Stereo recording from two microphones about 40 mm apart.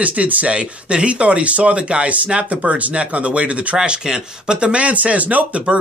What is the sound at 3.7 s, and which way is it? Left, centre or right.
Speech, right.